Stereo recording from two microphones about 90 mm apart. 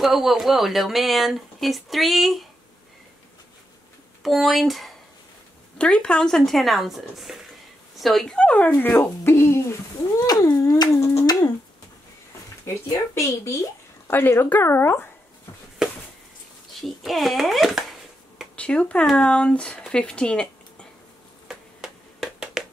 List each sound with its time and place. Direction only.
0.0 s speech: 5° right (ahead or behind)
4.2 s speech: centre (ahead or behind)
5.8 s speech: 10° left (ahead or behind); by 9.8 s 30° left (ahead or behind)
10.2 s a sound: 45° left (ahead or behind)
12.7 s speech: 30° left (ahead or behind)
16.8 s speech: centre (ahead or behind)
18.6 s speech: 10° left (ahead or behind)
21.5 s a sound: 5° right (ahead or behind)